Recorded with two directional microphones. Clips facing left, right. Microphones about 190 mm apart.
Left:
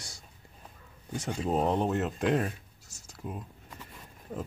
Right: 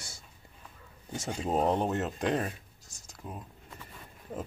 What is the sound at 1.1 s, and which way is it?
Speech, 25° right (ahead or behind).